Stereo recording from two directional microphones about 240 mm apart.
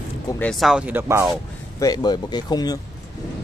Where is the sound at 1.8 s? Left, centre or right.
Centre.